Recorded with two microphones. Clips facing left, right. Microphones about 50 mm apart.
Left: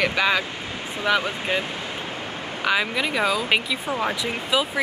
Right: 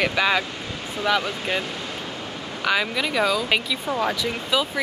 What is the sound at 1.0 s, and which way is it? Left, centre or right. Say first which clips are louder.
Speech: even; centre.